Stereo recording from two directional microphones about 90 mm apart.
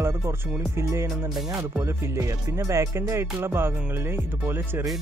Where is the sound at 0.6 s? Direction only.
35° right (ahead or behind).